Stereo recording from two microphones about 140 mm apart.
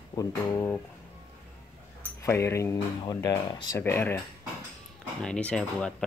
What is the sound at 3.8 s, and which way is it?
Speech, 15° left (ahead or behind).